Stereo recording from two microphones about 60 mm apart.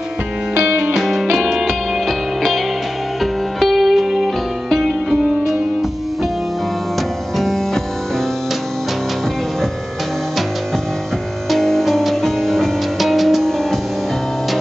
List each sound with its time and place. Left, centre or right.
0.7 s music: right
0.9 s music: centre
7.3 s music: centre
11.5 s music: centre